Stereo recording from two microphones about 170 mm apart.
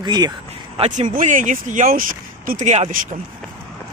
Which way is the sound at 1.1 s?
50° right (ahead or behind).